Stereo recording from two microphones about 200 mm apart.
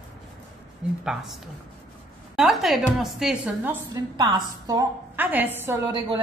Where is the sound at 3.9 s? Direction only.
20° right (ahead or behind).